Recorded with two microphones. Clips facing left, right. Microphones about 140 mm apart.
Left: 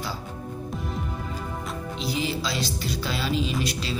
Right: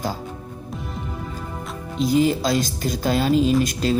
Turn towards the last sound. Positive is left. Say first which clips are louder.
# right 9 dB
turn(degrees=-45)  # may be behind; listen again after turning